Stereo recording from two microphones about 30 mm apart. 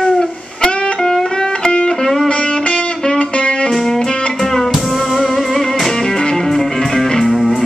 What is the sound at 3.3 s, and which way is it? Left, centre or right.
Music, left.